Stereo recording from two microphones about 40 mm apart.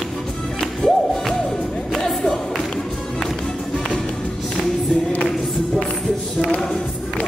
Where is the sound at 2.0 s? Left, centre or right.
Centre.